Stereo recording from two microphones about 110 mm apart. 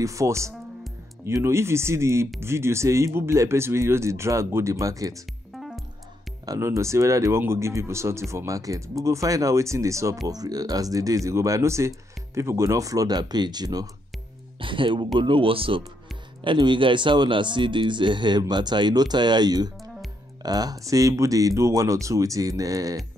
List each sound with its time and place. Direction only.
0.0 s speech: 30° right (ahead or behind)
5.6 s music: centre (ahead or behind)
6.4 s speech: 30° right (ahead or behind)
14.6 s speech: 50° right (ahead or behind); by 23.0 s 30° right (ahead or behind)